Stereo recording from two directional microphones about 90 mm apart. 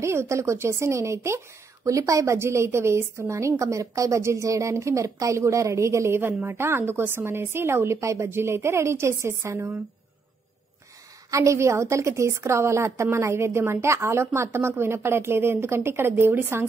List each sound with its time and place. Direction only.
0.0 s a woman's voice: 30° right (ahead or behind)
11.2 s a woman's voice: 35° right (ahead or behind)